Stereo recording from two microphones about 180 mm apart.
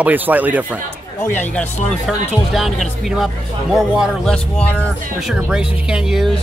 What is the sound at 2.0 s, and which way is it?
Speech, centre (ahead or behind).